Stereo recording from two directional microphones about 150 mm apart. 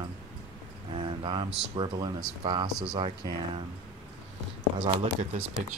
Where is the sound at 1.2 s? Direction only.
35° right (ahead or behind).